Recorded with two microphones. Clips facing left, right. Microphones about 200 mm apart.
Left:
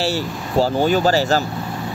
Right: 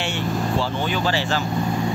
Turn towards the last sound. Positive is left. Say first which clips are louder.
# left 7 dB
turn(degrees=40)  # may be behind; listen again after turning